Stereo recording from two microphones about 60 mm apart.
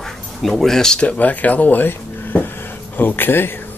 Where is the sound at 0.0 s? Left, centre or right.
Centre.